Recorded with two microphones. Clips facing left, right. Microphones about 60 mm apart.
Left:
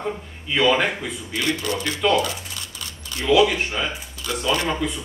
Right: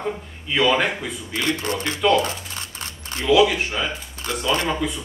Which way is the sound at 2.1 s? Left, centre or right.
Right.